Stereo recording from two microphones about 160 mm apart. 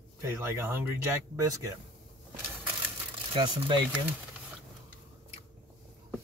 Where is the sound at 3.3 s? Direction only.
30° right (ahead or behind).